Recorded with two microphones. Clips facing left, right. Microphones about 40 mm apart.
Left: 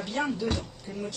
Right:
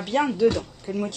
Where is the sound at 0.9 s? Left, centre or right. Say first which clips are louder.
Right 10 dB; right.